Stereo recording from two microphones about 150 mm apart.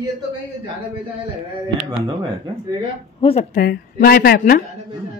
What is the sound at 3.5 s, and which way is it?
A woman's voice, 85° left.